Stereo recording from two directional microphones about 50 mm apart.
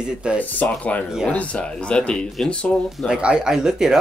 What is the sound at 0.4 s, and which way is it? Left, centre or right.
Speech, left.